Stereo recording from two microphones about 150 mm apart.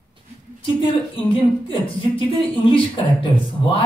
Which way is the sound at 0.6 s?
35° left (ahead or behind).